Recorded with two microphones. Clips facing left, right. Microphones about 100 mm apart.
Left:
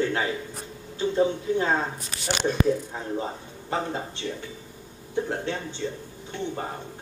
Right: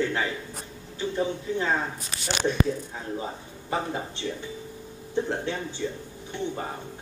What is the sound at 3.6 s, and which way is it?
Speech, 15° right (ahead or behind).